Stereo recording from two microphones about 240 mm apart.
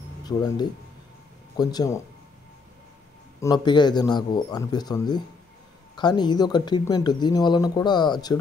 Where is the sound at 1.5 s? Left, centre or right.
Centre.